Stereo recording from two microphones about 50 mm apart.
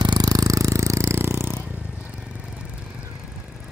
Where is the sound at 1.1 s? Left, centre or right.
Right.